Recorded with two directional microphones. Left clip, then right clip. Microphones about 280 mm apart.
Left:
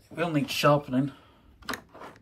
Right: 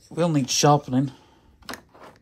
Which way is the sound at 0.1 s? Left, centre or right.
Centre.